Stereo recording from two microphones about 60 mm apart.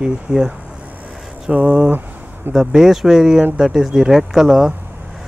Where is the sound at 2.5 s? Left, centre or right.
Centre.